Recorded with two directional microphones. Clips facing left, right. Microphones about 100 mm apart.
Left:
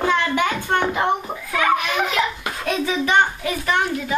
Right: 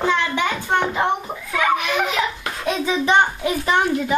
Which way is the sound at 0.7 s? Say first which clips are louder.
Even; 10° right (ahead or behind).